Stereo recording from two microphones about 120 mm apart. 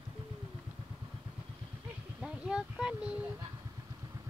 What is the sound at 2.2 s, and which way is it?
Speech, 5° right (ahead or behind).